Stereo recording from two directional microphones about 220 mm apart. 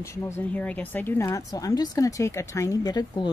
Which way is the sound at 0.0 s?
15° left (ahead or behind).